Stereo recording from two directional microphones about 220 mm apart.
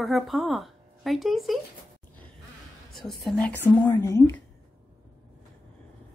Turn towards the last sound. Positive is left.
turn(degrees=10)  # may be behind; listen again after turning